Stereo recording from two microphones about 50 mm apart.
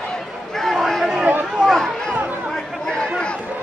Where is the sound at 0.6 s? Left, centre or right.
Centre.